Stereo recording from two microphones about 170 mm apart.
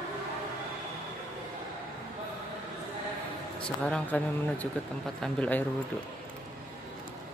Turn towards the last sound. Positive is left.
turn(degrees=10)  # may be behind; listen again after turning